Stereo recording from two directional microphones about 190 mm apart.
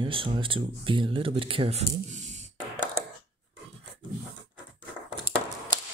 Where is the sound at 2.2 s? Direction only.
40° right (ahead or behind).